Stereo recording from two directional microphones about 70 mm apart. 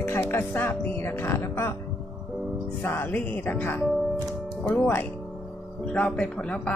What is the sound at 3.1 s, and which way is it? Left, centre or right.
Speech, left.